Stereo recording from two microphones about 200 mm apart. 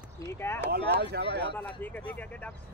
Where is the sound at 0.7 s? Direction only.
55° right (ahead or behind).